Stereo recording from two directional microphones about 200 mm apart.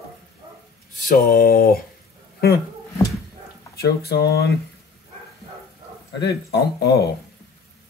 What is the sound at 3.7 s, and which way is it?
Speech, 50° left (ahead or behind).